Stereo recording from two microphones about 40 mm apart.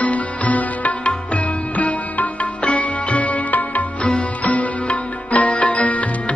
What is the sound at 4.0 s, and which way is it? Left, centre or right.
Music, left.